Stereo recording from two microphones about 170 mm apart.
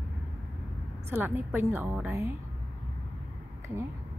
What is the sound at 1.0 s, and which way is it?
A woman's voice, 10° right (ahead or behind).